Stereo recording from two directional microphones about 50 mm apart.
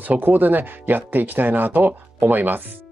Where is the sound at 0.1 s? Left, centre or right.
Right.